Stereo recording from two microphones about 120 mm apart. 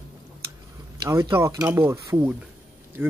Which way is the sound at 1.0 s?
30° right (ahead or behind).